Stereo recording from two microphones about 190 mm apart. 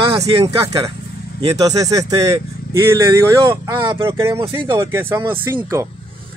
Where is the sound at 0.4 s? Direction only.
15° right (ahead or behind).